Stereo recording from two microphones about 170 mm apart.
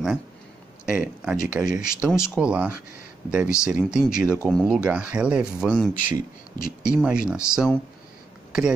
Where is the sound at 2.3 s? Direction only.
5° right (ahead or behind).